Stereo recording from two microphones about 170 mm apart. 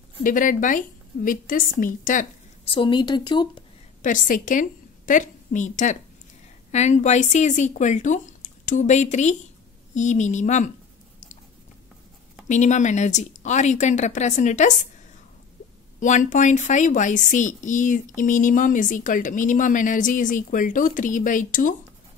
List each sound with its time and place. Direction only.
0.2 s a woman's voice: 50° left (ahead or behind)
2.6 s a woman's voice: 30° left (ahead or behind)
4.0 s a woman's voice: 50° left (ahead or behind)
12.4 s a woman's voice: 45° left (ahead or behind)
16.0 s a woman's voice: 45° left (ahead or behind)